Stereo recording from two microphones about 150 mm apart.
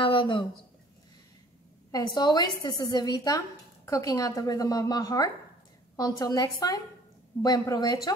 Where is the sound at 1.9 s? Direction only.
25° left (ahead or behind).